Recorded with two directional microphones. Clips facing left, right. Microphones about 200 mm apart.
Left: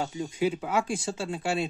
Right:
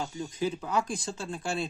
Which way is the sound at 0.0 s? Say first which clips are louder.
Left 4 dB; 20° left (ahead or behind).